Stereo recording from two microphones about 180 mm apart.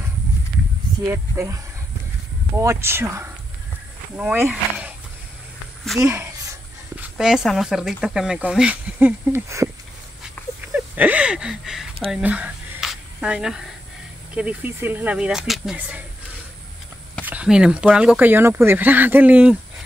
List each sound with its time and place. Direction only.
1.0 s speech: 15° right (ahead or behind)
7.0 s speech: 5° right (ahead or behind)
10.4 s dog: 10° left (ahead or behind)
10.7 s a sound: 10° right (ahead or behind)
14.3 s speech: 5° right (ahead or behind)
17.2 s speech: 10° right (ahead or behind)